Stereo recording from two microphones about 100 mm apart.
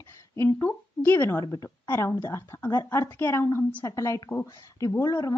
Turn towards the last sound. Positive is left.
turn(degrees=35)  # may be behind; listen again after turning